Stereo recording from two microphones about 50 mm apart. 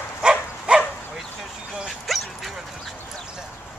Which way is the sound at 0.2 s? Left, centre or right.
Centre.